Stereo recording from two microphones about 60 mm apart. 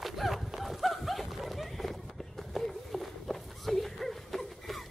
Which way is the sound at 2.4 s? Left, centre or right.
Centre.